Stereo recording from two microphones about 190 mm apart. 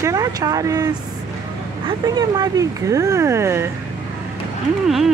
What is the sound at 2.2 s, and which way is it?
Speech, 20° right (ahead or behind).